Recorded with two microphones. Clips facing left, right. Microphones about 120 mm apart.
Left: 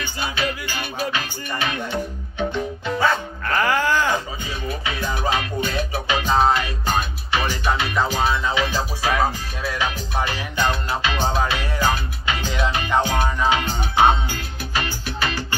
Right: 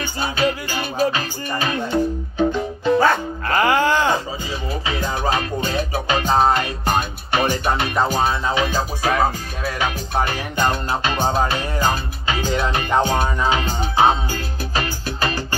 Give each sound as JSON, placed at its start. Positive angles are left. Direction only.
{"t": 0.0, "sound": "music", "side_deg": -40}
{"t": 3.5, "sound": "music", "side_deg": -20}
{"t": 4.8, "sound": "music", "side_deg": -35}
{"t": 13.0, "sound": "music", "side_deg": -30}